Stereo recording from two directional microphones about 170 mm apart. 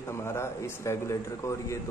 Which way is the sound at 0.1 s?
15° left (ahead or behind).